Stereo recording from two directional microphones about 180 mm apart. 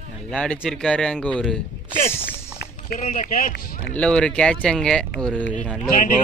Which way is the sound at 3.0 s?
40° left (ahead or behind).